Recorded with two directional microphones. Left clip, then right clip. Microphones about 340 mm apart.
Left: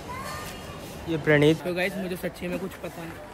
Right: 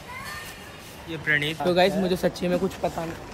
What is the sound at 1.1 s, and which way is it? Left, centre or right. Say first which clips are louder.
Speech: left 4 dB; centre.